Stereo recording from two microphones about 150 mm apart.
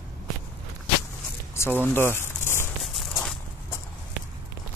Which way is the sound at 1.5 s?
15° left (ahead or behind).